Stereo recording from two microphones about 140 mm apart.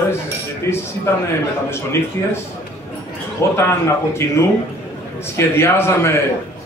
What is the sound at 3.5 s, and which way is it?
Speech, 20° left (ahead or behind).